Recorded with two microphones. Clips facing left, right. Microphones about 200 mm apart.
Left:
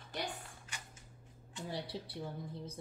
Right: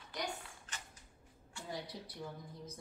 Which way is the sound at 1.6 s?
30° left (ahead or behind).